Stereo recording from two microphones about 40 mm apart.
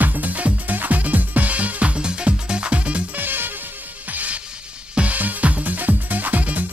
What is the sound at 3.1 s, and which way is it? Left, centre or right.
Music, right.